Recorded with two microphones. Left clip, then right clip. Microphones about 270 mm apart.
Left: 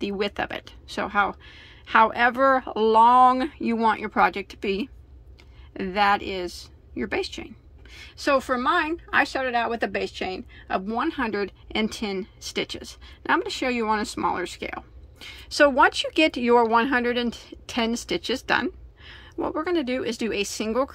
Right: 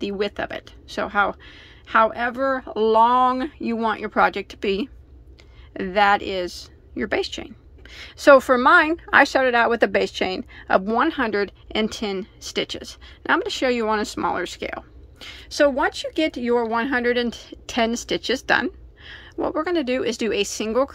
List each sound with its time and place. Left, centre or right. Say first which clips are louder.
0.0 s speech: right 2 dB; centre